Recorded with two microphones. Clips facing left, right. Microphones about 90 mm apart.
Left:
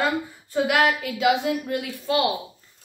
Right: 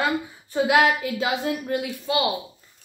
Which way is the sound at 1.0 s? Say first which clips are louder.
Left 3 dB; 35° right (ahead or behind).